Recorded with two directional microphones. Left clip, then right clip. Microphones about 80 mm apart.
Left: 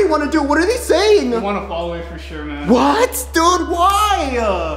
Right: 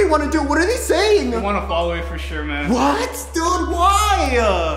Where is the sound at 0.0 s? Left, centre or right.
Centre.